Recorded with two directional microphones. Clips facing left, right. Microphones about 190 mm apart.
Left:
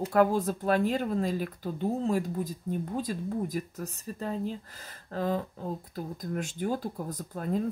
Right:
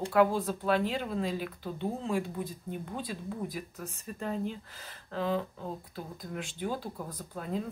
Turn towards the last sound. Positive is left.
turn(degrees=45)  # may be behind; listen again after turning